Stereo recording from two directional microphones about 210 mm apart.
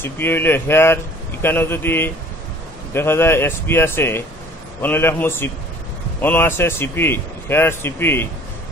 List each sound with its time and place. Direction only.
0.0 s speech: 10° left (ahead or behind)